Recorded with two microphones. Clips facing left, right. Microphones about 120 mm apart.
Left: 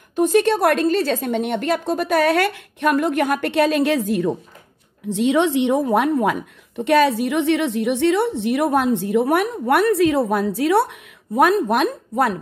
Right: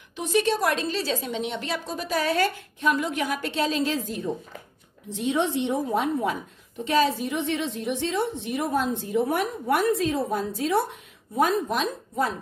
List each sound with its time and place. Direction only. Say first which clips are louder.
0.1 s a woman's voice: left 7 dB; 50° left (ahead or behind); by 4.3 s 70° left (ahead or behind)
5.1 s a woman's voice: left 7 dB; 80° left; by 12.4 s 65° left (ahead or behind)